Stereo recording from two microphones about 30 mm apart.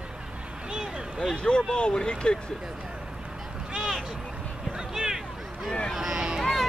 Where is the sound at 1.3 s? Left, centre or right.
Left.